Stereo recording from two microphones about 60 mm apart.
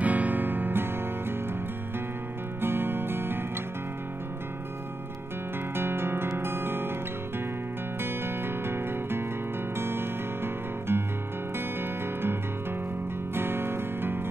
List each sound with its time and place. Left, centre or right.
0.0 s music: right
2.6 s music: right
5.8 s music: right
8.0 s music: right